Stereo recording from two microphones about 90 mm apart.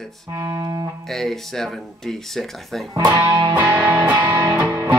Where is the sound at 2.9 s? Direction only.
55° right (ahead or behind).